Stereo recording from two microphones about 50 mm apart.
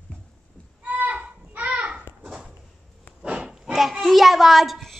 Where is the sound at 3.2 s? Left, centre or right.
Right.